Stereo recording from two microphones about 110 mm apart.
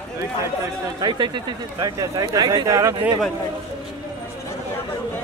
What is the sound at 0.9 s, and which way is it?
Speech, 45° right (ahead or behind).